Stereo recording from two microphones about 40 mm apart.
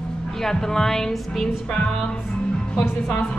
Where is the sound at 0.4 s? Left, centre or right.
Centre.